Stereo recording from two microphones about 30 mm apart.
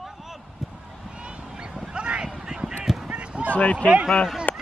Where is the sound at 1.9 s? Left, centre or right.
Right.